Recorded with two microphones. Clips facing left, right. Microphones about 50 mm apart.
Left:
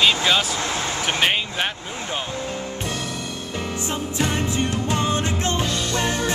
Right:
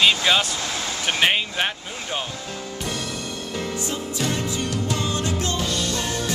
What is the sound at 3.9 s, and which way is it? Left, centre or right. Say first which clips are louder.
Music: left 5 dB; left.